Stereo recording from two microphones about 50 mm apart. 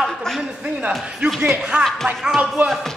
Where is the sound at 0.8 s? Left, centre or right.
Right.